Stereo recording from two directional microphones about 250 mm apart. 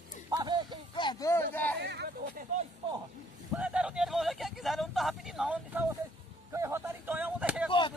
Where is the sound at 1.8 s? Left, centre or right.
Right.